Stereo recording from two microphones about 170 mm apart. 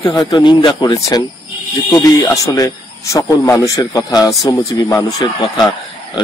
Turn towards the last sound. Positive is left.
turn(degrees=25)  # may be behind; listen again after turning